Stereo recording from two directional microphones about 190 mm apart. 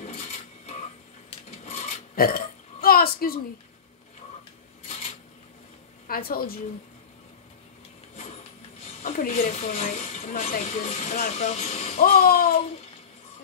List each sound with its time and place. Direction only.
0.0 s a sound: 35° left (ahead or behind)
2.1 s burping: 50° left (ahead or behind)
6.0 s music: 50° left (ahead or behind)
9.0 s speech: 50° left (ahead or behind)
9.3 s speech: 35° left (ahead or behind)
12.0 s music: 50° left (ahead or behind)